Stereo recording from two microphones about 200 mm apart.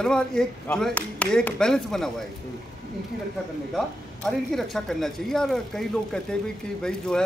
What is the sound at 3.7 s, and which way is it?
A man's voice, centre (ahead or behind).